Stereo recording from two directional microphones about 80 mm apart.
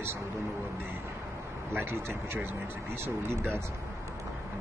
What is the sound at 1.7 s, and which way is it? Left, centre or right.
Speech, right.